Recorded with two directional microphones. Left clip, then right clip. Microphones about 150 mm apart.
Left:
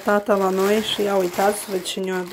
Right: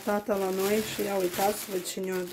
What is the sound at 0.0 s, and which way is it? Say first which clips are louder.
Speech: left 10 dB; 25° left (ahead or behind).